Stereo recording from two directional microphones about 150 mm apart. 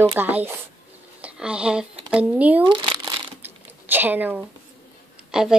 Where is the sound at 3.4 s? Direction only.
15° right (ahead or behind).